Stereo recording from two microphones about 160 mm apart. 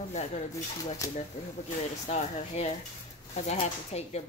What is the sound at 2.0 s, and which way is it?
Speech, 45° left (ahead or behind).